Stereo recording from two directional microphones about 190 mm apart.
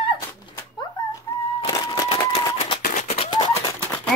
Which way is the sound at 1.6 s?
25° left (ahead or behind).